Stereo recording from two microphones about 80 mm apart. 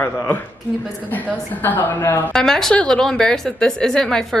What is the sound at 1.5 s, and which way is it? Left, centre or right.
Speech, left.